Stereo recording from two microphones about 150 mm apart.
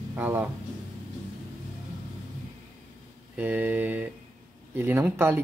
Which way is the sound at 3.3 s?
10° right (ahead or behind).